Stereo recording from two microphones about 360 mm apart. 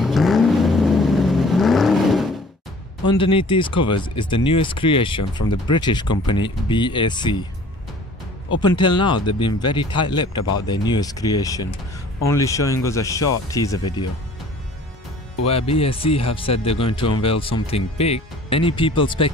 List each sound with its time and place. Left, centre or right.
0.0 s vehicle: centre
3.2 s speech: centre
5.2 s speech: left
5.7 s speech: centre
8.7 s speech: centre
15.4 s speech: centre